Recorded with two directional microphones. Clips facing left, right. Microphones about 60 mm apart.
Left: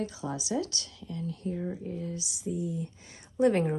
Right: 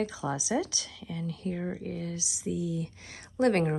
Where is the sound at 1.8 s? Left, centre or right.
Right.